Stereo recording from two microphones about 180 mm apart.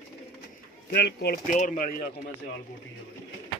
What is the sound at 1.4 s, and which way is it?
Speech, 45° left (ahead or behind).